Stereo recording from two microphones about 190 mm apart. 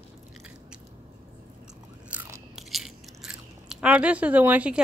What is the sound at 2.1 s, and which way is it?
Biting, centre (ahead or behind).